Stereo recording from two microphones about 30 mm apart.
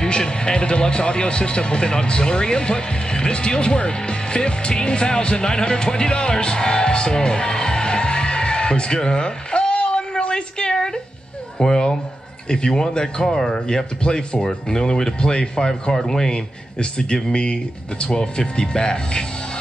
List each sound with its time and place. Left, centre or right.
0.0 s speech: left
16.0 s a man's voice: centre
17.1 s speech: left